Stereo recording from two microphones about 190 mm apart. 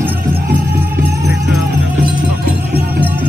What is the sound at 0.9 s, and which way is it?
Music, 60° right (ahead or behind).